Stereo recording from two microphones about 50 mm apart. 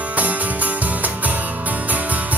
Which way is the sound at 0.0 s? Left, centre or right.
Right.